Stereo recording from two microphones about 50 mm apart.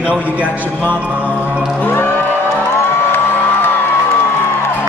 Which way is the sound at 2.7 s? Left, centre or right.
Left.